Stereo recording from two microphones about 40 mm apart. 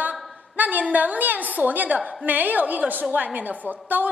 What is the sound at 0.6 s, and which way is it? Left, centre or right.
A woman's voice, right.